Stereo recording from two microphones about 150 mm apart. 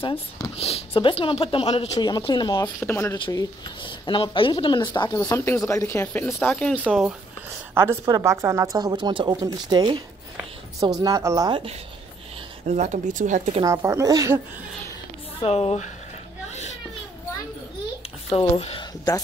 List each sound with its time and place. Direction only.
0.0 s speech: 35° left (ahead or behind)
2.0 s speech: 30° left (ahead or behind)
2.8 s speech: 15° left (ahead or behind)
3.2 s speech: 30° left (ahead or behind); by 6.8 s 10° left (ahead or behind)
6.8 s speech: 5° right (ahead or behind)
7.7 s a woman's voice: 15° right (ahead or behind)
12.6 s speech: 50° right (ahead or behind)
13.7 s a woman's voice: 20° right (ahead or behind)
15.4 s speech: 40° left (ahead or behind)
18.3 s speech: 40° left (ahead or behind)